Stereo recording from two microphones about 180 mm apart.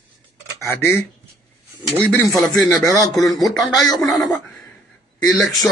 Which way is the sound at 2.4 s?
Centre (ahead or behind).